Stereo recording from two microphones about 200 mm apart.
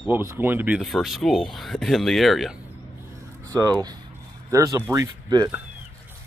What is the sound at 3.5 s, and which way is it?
Speech, 20° right (ahead or behind).